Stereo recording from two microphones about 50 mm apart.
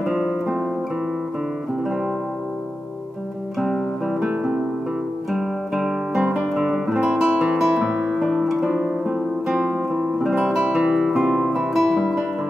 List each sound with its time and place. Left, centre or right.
0.0 s guitar: centre
3.5 s music: centre
6.6 s guitar: centre
7.8 s music: centre
8.2 s music: centre